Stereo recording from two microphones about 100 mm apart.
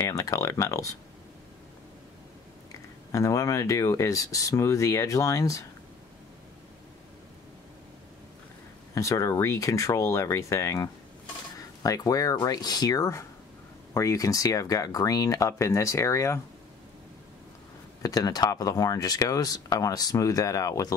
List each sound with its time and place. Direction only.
0.0 s speech: 35° left (ahead or behind)
3.1 s speech: 30° left (ahead or behind)
8.9 s speech: 30° left (ahead or behind)
18.0 s speech: 40° left (ahead or behind)